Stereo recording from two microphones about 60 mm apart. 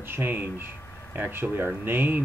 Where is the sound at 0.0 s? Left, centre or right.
Right.